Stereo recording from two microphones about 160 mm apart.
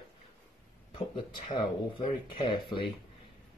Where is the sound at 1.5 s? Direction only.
30° left (ahead or behind).